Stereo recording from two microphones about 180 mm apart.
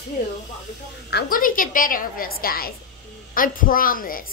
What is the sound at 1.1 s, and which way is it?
A woman's voice, 60° left (ahead or behind).